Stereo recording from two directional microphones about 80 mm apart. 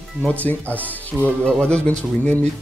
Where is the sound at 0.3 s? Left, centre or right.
Centre.